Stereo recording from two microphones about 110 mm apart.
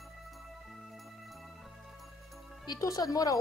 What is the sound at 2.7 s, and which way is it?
Speech, 35° left (ahead or behind).